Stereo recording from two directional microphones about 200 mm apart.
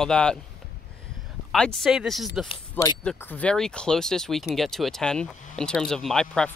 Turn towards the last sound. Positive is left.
turn(degrees=5)  # may be behind; listen again after turning